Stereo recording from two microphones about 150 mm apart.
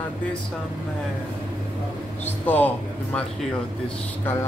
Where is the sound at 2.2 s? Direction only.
10° left (ahead or behind).